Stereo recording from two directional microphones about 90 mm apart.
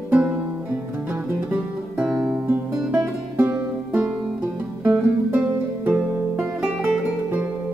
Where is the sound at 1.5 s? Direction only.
10° right (ahead or behind).